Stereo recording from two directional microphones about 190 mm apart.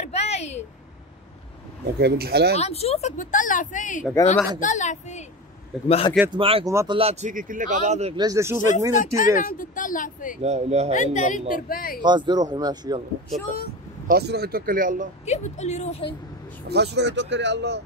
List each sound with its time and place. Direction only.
0.0 s a sound: 35° left (ahead or behind)
2.0 s speech: 55° right (ahead or behind)
2.5 s speech: 35° left (ahead or behind)
6.3 s speech: 25° right (ahead or behind)
6.7 s speech: 15° right (ahead or behind)
7.0 s a man's voice: 35° right (ahead or behind)
8.2 s speech: 15° right (ahead or behind)
8.5 s speech: 40° left (ahead or behind)
10.4 s a man's voice: 35° right (ahead or behind)
11.0 s speech: 40° left (ahead or behind)
12.0 s speech: 25° right (ahead or behind)
14.0 s speech: 55° right (ahead or behind)
15.2 s speech: 35° left (ahead or behind)
16.6 s speech: 60° right (ahead or behind)